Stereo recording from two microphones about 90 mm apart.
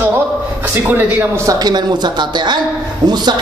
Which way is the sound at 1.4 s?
45° right (ahead or behind).